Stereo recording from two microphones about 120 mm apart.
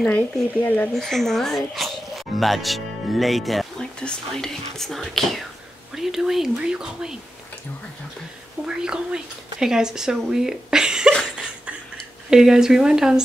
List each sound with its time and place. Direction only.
0.0 s speech: 10° left (ahead or behind)
8.6 s speech: 5° right (ahead or behind)
12.3 s speech: 5° right (ahead or behind)